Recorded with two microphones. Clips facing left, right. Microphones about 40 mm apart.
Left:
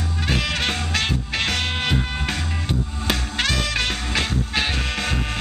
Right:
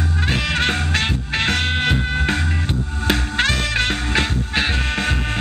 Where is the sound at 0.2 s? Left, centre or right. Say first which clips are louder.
Right 2 dB; right.